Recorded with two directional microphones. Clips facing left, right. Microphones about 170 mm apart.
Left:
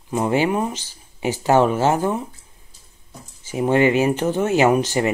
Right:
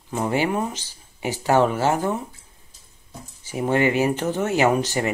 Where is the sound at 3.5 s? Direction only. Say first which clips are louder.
Left 4 dB; 20° left (ahead or behind).